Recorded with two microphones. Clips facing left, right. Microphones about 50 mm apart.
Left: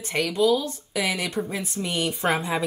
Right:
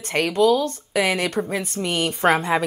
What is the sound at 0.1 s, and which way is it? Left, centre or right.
A woman's voice, right.